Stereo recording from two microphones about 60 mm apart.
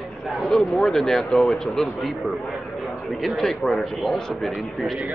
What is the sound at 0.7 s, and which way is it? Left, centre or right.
Speech, centre.